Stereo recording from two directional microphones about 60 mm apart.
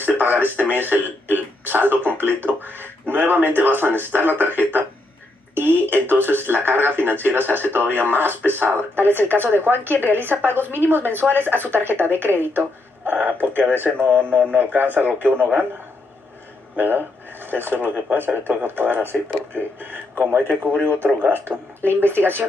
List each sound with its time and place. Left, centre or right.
0.0 s a sound: right
0.8 s a woman's voice: right
5.5 s a woman's voice: right
16.7 s a woman's voice: right